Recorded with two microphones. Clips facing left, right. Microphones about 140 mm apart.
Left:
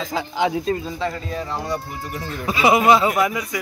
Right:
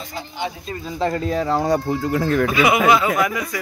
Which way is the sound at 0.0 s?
90° left.